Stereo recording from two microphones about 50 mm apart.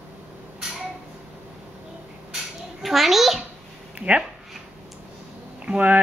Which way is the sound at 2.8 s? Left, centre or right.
Centre.